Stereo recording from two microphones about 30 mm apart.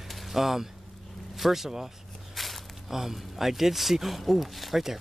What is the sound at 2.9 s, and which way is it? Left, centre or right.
Speech, centre.